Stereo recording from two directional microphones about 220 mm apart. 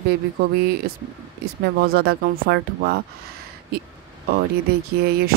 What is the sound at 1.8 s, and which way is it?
Speech, 45° right (ahead or behind).